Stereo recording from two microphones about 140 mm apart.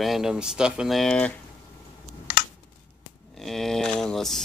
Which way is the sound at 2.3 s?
90° left.